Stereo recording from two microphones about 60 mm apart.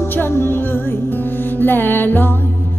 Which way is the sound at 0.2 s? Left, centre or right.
Left.